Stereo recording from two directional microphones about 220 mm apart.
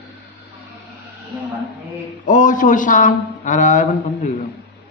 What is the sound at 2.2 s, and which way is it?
A man's voice, 35° left (ahead or behind).